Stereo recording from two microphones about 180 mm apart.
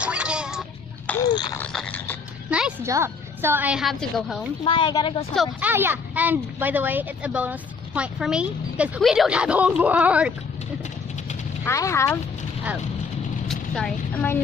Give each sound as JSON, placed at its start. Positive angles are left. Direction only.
{"t": 0.0, "sound": "cat", "side_deg": -5}
{"t": 1.2, "sound": "a sound", "side_deg": 20}
{"t": 1.6, "sound": "a sound", "side_deg": 5}
{"t": 2.5, "sound": "music", "side_deg": -5}
{"t": 2.9, "sound": "speech", "side_deg": -15}
{"t": 4.6, "sound": "speech", "side_deg": 25}
{"t": 5.3, "sound": "speech", "side_deg": 0}
{"t": 5.7, "sound": "speech", "side_deg": -10}
{"t": 11.6, "sound": "speech", "side_deg": 15}
{"t": 13.5, "sound": "a woman's voice", "side_deg": 5}